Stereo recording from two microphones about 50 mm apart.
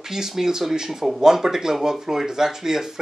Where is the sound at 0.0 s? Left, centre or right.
Centre.